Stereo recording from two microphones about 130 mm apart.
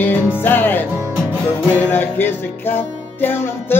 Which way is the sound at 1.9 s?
15° left (ahead or behind).